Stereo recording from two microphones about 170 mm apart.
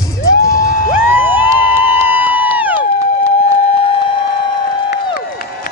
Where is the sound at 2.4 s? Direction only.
10° right (ahead or behind).